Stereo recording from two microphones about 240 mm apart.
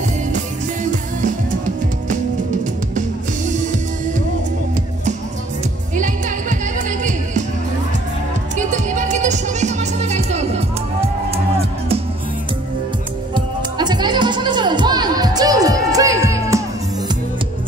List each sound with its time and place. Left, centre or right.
5.9 s music: right
8.5 s music: right
13.3 s music: centre